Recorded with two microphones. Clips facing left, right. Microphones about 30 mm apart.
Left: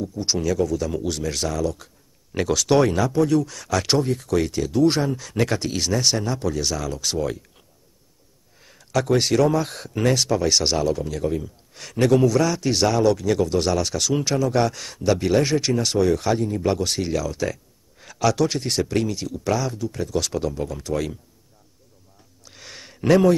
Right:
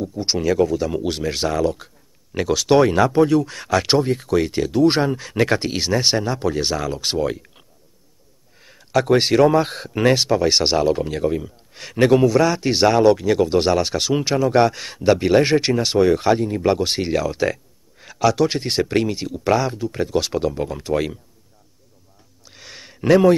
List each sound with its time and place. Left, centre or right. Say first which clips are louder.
0.2 s speech: right 4 dB; right
2.5 s speech: right 3 dB; centre
2.9 s speech: right 4 dB; right
8.6 s speech: right 4 dB; centre
11.2 s speech: right 3 dB; right
17.9 s a man's voice: right 3 dB; centre
18.5 s speech: right 3 dB; right
22.4 s a sound: right 1 dB; centre